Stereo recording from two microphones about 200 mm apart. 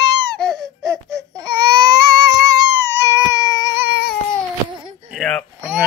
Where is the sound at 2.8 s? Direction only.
15° left (ahead or behind).